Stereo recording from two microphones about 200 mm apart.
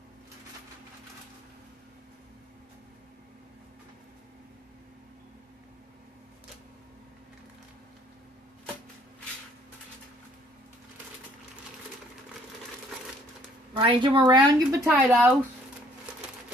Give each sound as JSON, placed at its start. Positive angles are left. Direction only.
{"t": 13.7, "sound": "speech", "side_deg": -25}